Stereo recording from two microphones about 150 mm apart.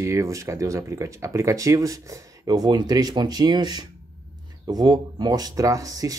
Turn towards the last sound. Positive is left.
turn(degrees=-25)  # may be behind; listen again after turning